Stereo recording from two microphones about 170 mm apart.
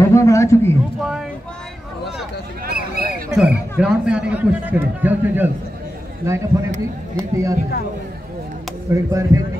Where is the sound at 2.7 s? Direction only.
60° right (ahead or behind).